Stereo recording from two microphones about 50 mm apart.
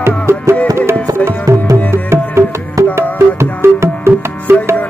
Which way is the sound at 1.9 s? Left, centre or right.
Right.